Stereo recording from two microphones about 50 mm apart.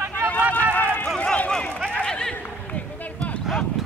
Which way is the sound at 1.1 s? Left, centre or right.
Left.